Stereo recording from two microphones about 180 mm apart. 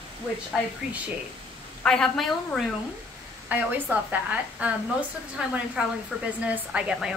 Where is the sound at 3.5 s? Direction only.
10° right (ahead or behind).